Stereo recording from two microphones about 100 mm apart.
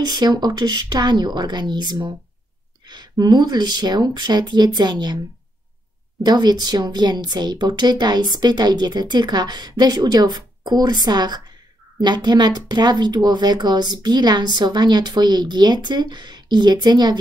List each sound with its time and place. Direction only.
0.0 s speech: 45° right (ahead or behind)
6.2 s speech: 45° right (ahead or behind)